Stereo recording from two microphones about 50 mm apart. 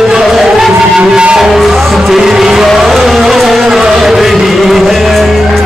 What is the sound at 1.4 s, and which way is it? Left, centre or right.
Music, centre.